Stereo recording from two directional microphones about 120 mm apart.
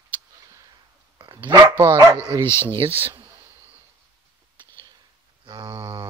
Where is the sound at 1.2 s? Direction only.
45° right (ahead or behind).